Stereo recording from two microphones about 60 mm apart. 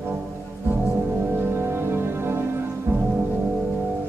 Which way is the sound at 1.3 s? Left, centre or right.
Right.